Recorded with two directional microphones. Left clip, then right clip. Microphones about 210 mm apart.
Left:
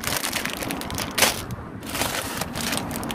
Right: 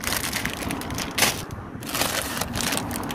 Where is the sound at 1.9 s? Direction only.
35° right (ahead or behind).